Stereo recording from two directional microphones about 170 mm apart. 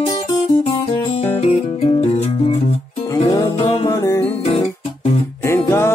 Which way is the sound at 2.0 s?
40° left (ahead or behind).